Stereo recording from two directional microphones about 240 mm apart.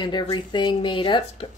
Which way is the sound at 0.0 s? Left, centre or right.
Centre.